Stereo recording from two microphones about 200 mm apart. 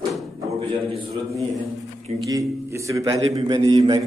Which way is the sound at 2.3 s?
15° right (ahead or behind).